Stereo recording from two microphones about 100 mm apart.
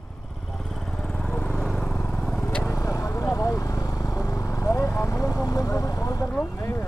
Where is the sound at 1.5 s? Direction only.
5° right (ahead or behind).